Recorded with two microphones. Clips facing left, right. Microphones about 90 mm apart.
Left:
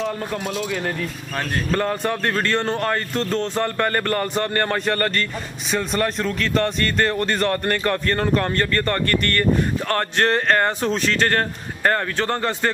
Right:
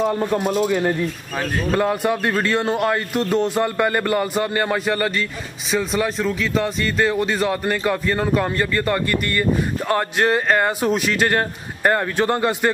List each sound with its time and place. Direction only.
0.1 s a man's voice: 25° right (ahead or behind)
0.7 s speech: 10° right (ahead or behind)